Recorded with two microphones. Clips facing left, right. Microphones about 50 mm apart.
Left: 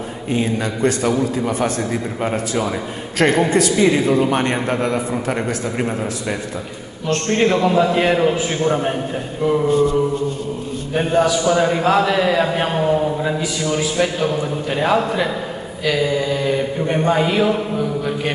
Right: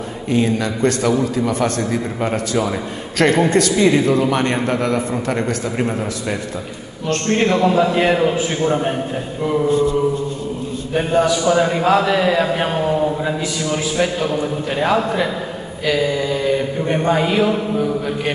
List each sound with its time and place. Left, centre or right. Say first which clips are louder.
0.3 s a man's voice: right 3 dB; centre
9.7 s mantra: even; left
11.4 s speech: right 1 dB; centre